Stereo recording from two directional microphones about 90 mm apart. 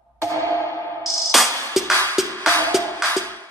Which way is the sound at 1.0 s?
40° right (ahead or behind).